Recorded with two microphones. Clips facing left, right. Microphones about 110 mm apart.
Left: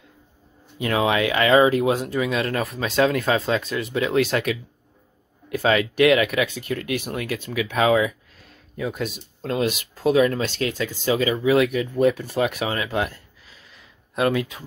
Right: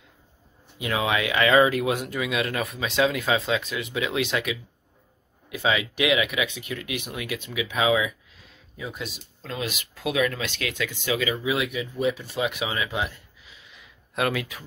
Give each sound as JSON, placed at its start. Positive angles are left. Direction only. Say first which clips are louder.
{"t": 0.7, "sound": "speech", "louder": "left 4 dB", "side_deg": 40}
{"t": 14.1, "sound": "speech", "louder": "left 5 dB", "side_deg": 30}